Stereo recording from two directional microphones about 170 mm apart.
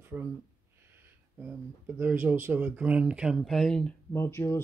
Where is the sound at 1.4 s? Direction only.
10° right (ahead or behind).